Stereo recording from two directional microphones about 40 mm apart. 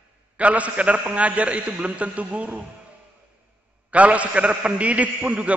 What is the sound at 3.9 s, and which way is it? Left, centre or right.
A man's voice, right.